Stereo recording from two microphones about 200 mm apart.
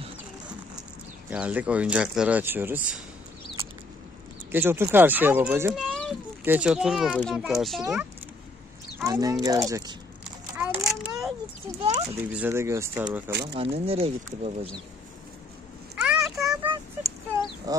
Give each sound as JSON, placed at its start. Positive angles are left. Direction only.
{"t": 1.3, "sound": "speech", "side_deg": -5}
{"t": 4.5, "sound": "a child's voice", "side_deg": -10}
{"t": 8.9, "sound": "speech", "side_deg": -15}
{"t": 10.6, "sound": "a sound", "side_deg": -5}
{"t": 12.1, "sound": "speech", "side_deg": -10}
{"t": 13.3, "sound": "speech", "side_deg": -55}
{"t": 13.6, "sound": "speech", "side_deg": -30}
{"t": 16.0, "sound": "a sound", "side_deg": -5}
{"t": 16.6, "sound": "a sound", "side_deg": -15}
{"t": 17.7, "sound": "goose", "side_deg": -20}